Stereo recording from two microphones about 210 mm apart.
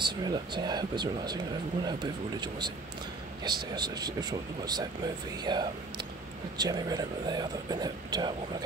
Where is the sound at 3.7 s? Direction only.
20° right (ahead or behind).